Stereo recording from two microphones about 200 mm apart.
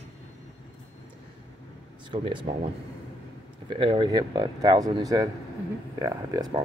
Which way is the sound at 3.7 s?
25° right (ahead or behind).